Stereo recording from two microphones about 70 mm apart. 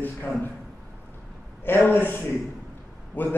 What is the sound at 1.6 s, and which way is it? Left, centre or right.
A man's voice, left.